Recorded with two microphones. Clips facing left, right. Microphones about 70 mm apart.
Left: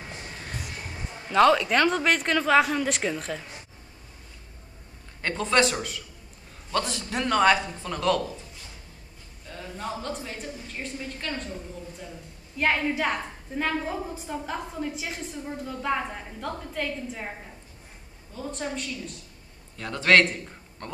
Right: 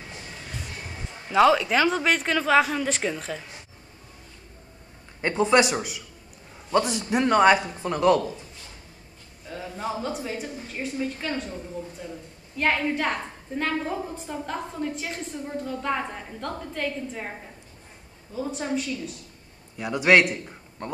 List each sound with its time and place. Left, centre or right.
1.1 s a man's voice: centre
5.2 s a man's voice: centre
9.5 s a man's voice: centre
12.5 s a man's voice: centre
18.3 s a man's voice: centre